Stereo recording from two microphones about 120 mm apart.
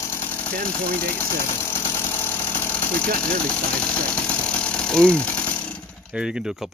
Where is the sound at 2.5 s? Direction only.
15° left (ahead or behind).